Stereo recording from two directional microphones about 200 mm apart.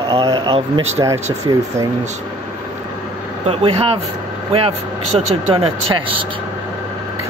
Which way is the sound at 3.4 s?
30° right (ahead or behind).